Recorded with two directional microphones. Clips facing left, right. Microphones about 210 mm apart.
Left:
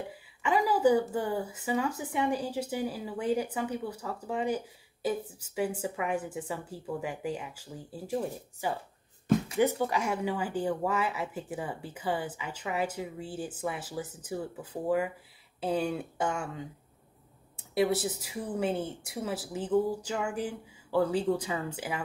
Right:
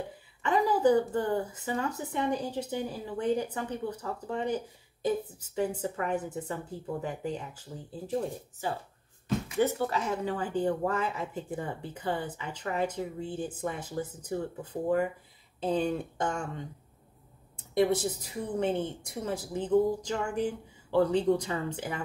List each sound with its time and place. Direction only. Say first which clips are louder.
0.4 s speech: even; 10° left (ahead or behind)
9.6 s speech: left 1 dB; 15° left (ahead or behind)